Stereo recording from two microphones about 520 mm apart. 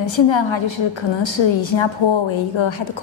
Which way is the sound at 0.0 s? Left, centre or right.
Left.